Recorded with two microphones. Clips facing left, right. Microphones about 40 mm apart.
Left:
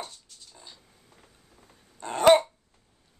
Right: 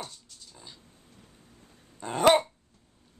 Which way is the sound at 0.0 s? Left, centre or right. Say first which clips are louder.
Left 1 dB; centre.